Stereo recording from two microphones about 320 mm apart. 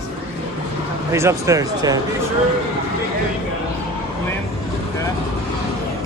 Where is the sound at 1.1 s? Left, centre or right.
Centre.